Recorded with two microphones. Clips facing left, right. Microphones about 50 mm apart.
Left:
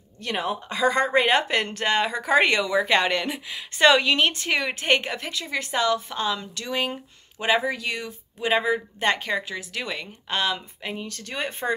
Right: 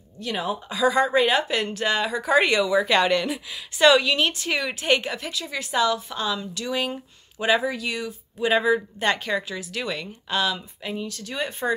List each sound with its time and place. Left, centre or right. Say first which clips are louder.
0.2 s speech: even; left
7.6 s speech: right 1 dB; left
8.5 s speech: right 2 dB; left
11.1 s speech: right 1 dB; left